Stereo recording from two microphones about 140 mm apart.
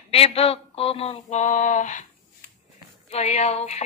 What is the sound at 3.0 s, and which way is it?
Mantra, 50° left (ahead or behind).